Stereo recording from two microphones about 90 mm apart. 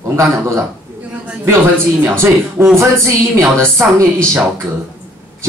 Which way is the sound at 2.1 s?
30° right (ahead or behind).